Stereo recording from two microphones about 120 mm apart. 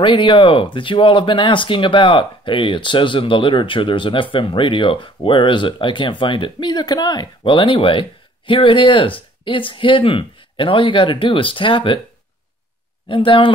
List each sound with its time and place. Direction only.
0.0 s speech: 45° left (ahead or behind)
13.1 s speech: 45° left (ahead or behind)